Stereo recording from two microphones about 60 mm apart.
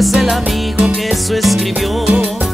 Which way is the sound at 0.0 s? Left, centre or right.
Centre.